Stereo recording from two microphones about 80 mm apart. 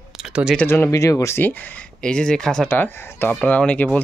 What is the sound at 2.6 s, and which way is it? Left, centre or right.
Speech, left.